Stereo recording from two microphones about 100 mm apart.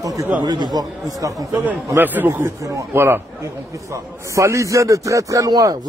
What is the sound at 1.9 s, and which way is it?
A man's voice, 20° right (ahead or behind).